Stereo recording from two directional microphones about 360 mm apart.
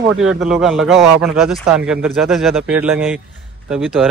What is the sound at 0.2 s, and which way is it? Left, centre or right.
A man's voice, centre.